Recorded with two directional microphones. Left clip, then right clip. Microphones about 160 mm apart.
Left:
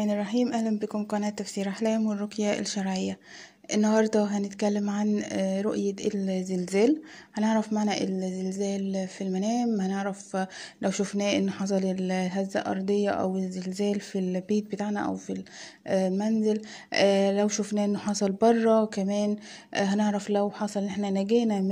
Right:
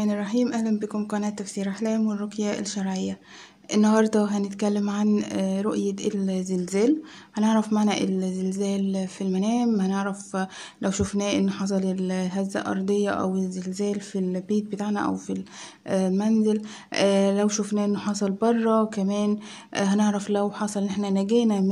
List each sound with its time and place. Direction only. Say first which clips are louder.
0.0 s speech: right 2 dB; 20° left (ahead or behind)
3.7 s speech: right 2 dB; 15° left (ahead or behind)
5.0 s speech: right 4 dB; 5° left (ahead or behind)
5.3 s speech: right 1 dB; 20° left (ahead or behind)